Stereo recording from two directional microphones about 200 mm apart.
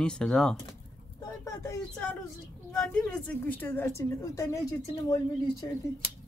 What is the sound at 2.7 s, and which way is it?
A woman's voice, 5° left (ahead or behind).